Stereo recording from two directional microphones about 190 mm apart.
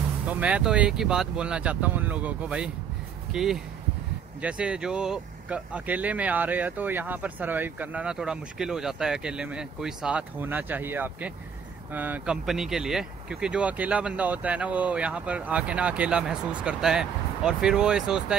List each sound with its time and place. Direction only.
0.3 s speech: 5° right (ahead or behind)